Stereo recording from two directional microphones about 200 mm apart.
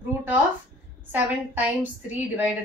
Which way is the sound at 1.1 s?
10° right (ahead or behind).